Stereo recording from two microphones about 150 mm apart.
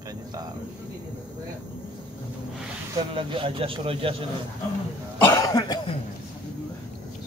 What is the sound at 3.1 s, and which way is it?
Speech, 35° right (ahead or behind).